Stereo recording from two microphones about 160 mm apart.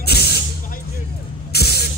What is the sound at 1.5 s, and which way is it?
Spray, 85° left.